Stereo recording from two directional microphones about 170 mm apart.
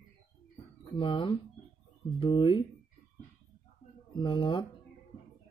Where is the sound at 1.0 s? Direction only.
30° left (ahead or behind).